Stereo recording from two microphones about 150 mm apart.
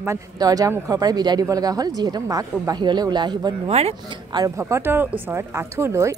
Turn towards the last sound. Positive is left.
turn(degrees=-20)  # may be behind; listen again after turning